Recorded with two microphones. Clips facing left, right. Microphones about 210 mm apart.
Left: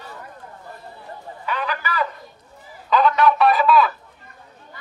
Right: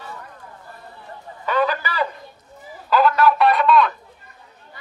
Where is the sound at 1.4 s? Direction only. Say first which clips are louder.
Right 6 dB; 40° right (ahead or behind).